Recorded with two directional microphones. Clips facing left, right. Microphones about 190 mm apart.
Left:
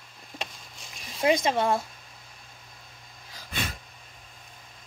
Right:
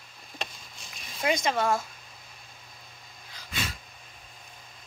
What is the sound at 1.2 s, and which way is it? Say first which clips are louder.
Speech: left 3 dB; 30° left (ahead or behind).